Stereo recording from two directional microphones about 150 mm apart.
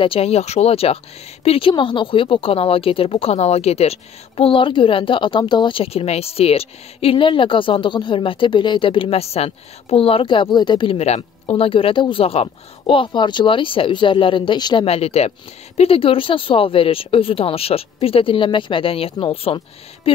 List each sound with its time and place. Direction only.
0.0 s speech: 40° left (ahead or behind)